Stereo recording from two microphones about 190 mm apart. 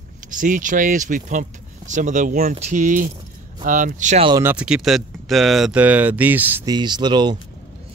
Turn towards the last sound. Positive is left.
turn(degrees=-25)  # may be behind; listen again after turning